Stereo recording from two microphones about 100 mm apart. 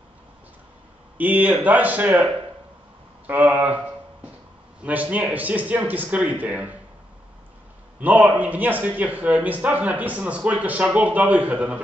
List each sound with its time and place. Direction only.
1.1 s a man's voice: 15° right (ahead or behind)
3.3 s a man's voice: 15° right (ahead or behind)
8.0 s a man's voice: 15° right (ahead or behind)